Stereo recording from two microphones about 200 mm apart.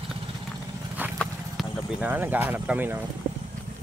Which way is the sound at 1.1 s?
Centre (ahead or behind).